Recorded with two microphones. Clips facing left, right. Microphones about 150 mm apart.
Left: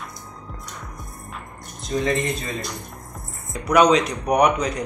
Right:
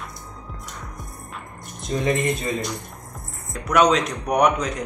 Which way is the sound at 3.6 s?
Centre (ahead or behind).